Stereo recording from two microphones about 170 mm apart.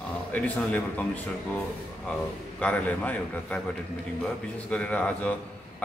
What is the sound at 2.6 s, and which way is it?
A man's voice, 5° left (ahead or behind).